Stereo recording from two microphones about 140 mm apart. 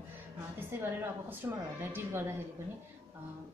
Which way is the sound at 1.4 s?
15° right (ahead or behind).